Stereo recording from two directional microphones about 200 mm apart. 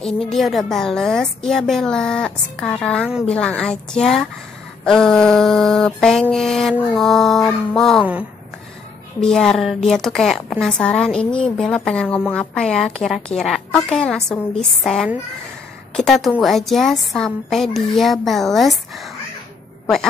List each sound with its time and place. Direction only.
0.0 s a woman's voice: centre (ahead or behind)